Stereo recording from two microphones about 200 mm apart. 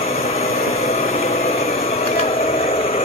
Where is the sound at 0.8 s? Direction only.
30° left (ahead or behind).